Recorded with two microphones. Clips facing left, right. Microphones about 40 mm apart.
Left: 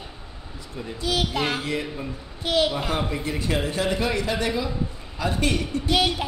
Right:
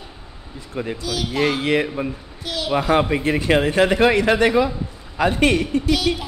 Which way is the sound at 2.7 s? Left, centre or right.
Right.